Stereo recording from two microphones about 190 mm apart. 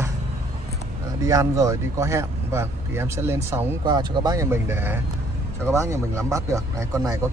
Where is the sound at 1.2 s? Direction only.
15° right (ahead or behind).